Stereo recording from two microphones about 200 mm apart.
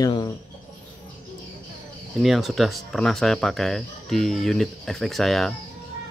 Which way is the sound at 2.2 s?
Centre (ahead or behind).